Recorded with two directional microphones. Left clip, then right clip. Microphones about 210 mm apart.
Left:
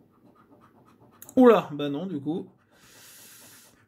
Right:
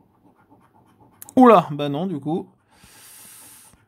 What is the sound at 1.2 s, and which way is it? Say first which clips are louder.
Speech: right 5 dB; 40° right (ahead or behind).